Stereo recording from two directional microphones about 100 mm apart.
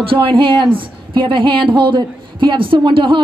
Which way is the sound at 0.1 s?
60° right (ahead or behind).